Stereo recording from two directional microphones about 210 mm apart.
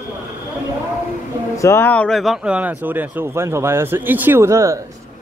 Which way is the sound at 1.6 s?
10° left (ahead or behind).